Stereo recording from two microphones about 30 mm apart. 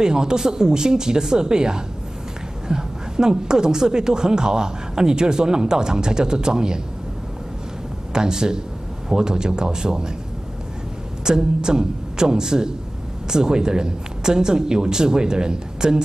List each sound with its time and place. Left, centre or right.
0.0 s a woman's voice: right
8.1 s a woman's voice: right
11.2 s a woman's voice: right